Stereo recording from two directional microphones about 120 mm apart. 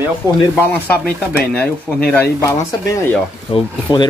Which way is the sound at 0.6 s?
15° left (ahead or behind).